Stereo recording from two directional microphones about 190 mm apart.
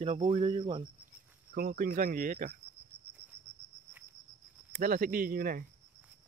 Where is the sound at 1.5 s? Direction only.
50° right (ahead or behind).